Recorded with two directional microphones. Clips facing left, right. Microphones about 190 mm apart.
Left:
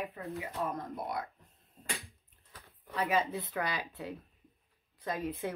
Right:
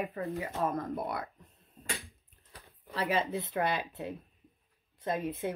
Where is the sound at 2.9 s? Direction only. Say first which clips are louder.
Even; 30° right (ahead or behind).